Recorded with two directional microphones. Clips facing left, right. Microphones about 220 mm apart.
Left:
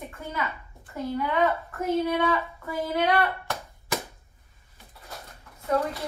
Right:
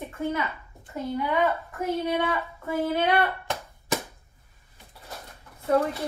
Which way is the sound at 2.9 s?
25° right (ahead or behind).